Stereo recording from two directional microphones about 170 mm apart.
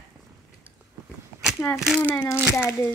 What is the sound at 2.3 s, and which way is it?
Speech, 5° right (ahead or behind).